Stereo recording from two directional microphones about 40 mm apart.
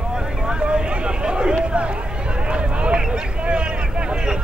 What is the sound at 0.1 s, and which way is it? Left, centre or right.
Vehicle, centre.